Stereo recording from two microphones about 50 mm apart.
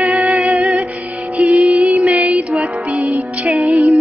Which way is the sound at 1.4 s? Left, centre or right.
Right.